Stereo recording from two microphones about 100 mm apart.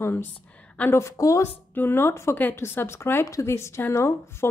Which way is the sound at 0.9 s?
30° left (ahead or behind).